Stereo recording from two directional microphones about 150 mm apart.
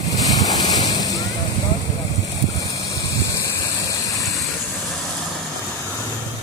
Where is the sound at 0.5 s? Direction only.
25° left (ahead or behind).